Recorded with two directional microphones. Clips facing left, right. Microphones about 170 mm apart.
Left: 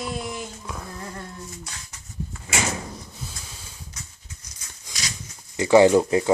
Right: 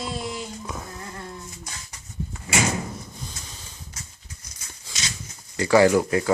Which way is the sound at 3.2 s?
5° left (ahead or behind).